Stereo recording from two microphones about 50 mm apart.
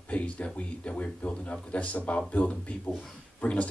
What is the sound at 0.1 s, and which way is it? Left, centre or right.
Speech, left.